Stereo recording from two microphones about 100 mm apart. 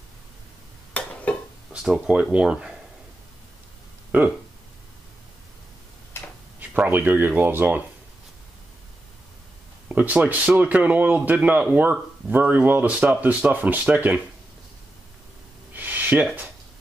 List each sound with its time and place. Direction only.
1.0 s a sound: 15° left (ahead or behind)
1.7 s speech: 5° right (ahead or behind)
4.1 s speech: 15° right (ahead or behind)
6.7 s speech: 15° right (ahead or behind)
9.8 s speech: 15° right (ahead or behind)
15.7 s a sound: 20° right (ahead or behind)